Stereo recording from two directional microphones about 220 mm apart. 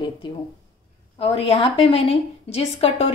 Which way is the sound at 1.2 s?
25° left (ahead or behind).